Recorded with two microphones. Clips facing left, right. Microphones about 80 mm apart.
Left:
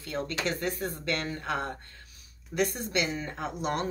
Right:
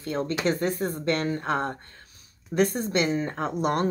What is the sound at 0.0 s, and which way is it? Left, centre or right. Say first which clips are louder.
Speech: right 6 dB; right.